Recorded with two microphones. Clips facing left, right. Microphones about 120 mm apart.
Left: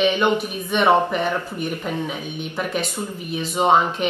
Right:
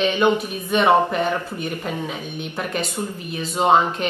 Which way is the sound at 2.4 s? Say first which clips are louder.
Left 1 dB; 10° left (ahead or behind).